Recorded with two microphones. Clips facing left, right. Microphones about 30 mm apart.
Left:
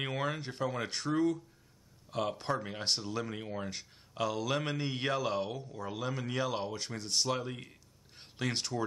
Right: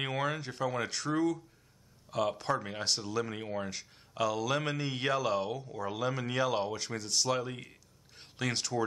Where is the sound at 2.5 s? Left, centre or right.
Centre.